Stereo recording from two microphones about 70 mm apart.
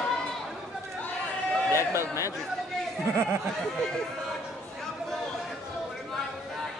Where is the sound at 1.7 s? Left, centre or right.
Left.